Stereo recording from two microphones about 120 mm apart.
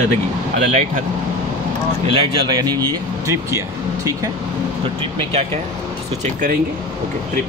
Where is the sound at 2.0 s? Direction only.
50° right (ahead or behind); by 4.3 s 25° right (ahead or behind).